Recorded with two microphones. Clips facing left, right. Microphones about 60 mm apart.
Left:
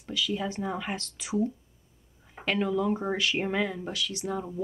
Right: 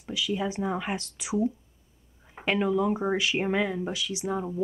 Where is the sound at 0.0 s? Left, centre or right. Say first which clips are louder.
Right 1 dB; centre.